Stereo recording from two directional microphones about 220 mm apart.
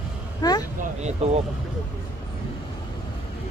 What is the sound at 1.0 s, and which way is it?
Speech, 30° right (ahead or behind).